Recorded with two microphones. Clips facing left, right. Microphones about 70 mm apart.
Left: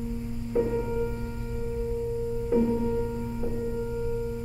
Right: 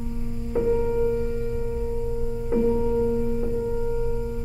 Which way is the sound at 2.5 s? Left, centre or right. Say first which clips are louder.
Right 1 dB; right.